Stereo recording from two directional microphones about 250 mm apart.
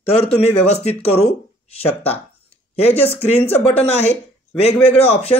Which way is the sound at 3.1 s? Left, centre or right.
Left.